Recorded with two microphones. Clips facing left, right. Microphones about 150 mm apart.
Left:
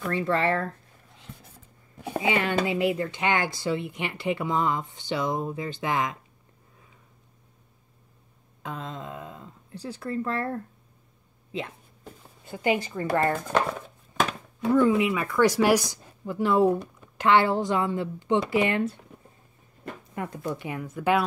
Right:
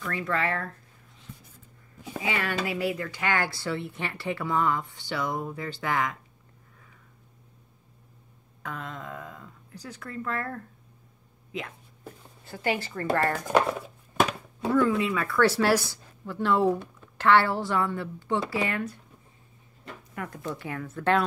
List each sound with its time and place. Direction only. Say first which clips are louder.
0.0 s speech: left 4 dB; 25° left (ahead or behind)
2.1 s a woman's voice: left 5 dB; 20° left (ahead or behind)
8.6 s a woman's voice: left 2 dB; 20° left (ahead or behind)
12.4 s a woman's voice: left 4 dB; 20° left (ahead or behind)
13.5 s dishes: right 2 dB; 10° right (ahead or behind)
14.7 s a woman's voice: left 3 dB; 20° left (ahead or behind)
20.2 s a woman's voice: left 3 dB; 20° left (ahead or behind)